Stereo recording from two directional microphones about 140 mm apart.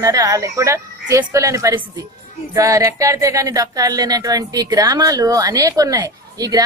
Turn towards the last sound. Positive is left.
turn(degrees=-25)  # may be behind; listen again after turning